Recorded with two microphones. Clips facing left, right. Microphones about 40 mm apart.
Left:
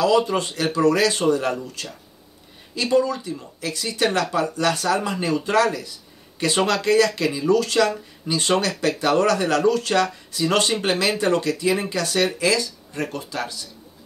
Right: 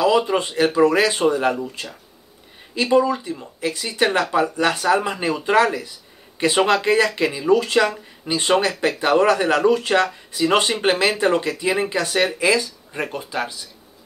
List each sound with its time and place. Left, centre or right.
0.0 s speech: centre